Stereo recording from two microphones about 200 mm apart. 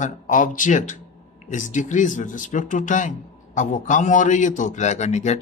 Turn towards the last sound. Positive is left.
turn(degrees=35)  # may be behind; listen again after turning